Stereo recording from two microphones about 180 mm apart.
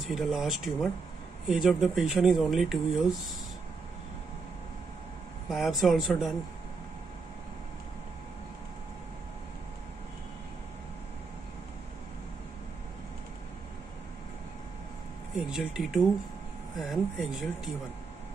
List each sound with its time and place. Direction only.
0.0 s speech: centre (ahead or behind)
5.5 s speech: centre (ahead or behind)
15.3 s speech: centre (ahead or behind)